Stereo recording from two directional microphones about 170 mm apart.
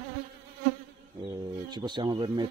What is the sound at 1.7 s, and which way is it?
Speech, 25° right (ahead or behind).